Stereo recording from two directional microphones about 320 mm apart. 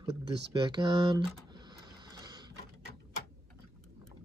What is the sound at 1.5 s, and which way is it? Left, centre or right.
Printer, centre.